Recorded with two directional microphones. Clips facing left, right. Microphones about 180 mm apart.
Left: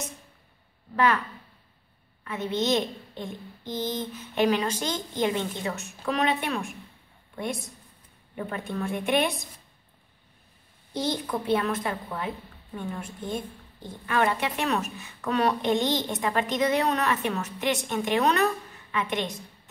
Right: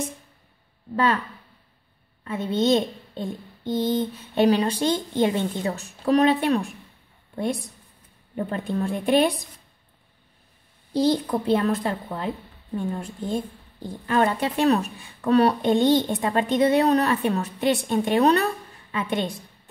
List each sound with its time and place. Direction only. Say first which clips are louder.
0.9 s speech: right 1 dB; 30° right (ahead or behind)
2.2 s a woman's voice: right 5 dB; 30° right (ahead or behind)
8.4 s speech: right 5 dB; 35° right (ahead or behind)
10.9 s a woman's voice: right 7 dB; 30° right (ahead or behind)